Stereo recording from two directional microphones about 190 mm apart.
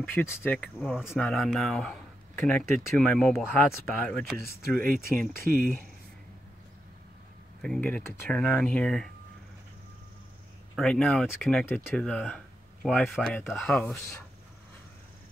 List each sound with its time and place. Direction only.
0.0 s speech: 10° left (ahead or behind)
4.5 s speech: 50° right (ahead or behind)
7.6 s speech: 5° left (ahead or behind)
10.8 s speech: 5° left (ahead or behind)